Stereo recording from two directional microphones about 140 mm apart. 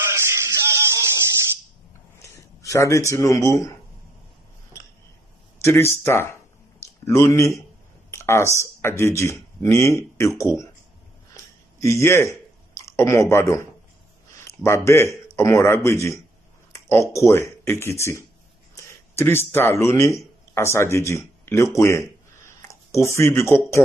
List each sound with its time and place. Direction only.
0.1 s music: 20° right (ahead or behind)
2.3 s speech: 20° left (ahead or behind)
5.6 s speech: 20° left (ahead or behind)
6.8 s a sound: 20° left (ahead or behind)
8.1 s speech: 20° left (ahead or behind)
11.8 s a man's voice: 20° left (ahead or behind)